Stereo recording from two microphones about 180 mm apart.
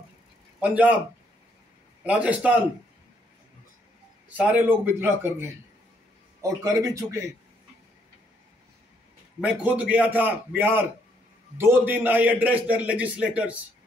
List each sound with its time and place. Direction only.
0.6 s a man's voice: 10° right (ahead or behind)
2.0 s a man's voice: 10° right (ahead or behind)
4.4 s a man's voice: 10° right (ahead or behind)
6.6 s a man's voice: 15° right (ahead or behind)
9.4 s a man's voice: 5° right (ahead or behind)